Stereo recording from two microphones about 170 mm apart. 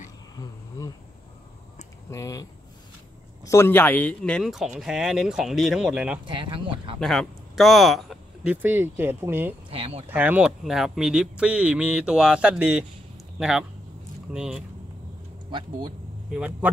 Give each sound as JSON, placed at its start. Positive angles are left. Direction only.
{"t": 0.4, "sound": "insect", "side_deg": 20}
{"t": 2.0, "sound": "speech", "side_deg": 20}
{"t": 3.4, "sound": "speech", "side_deg": 15}
{"t": 6.2, "sound": "speech", "side_deg": -30}
{"t": 7.0, "sound": "speech", "side_deg": 0}
{"t": 8.6, "sound": "speech", "side_deg": -10}
{"t": 9.7, "sound": "speech", "side_deg": -35}
{"t": 10.0, "sound": "speech", "side_deg": -10}
{"t": 16.3, "sound": "speech", "side_deg": -5}